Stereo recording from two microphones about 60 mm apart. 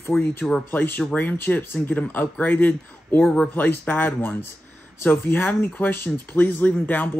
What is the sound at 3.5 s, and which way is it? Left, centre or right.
Speech, left.